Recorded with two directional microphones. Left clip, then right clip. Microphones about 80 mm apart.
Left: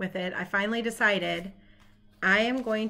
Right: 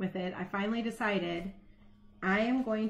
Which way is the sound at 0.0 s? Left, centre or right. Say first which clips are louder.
Left 5 dB; left.